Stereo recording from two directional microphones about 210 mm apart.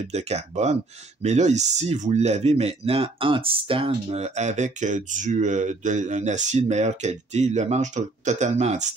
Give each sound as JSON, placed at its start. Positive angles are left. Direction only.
{"t": 0.0, "sound": "speech", "side_deg": -30}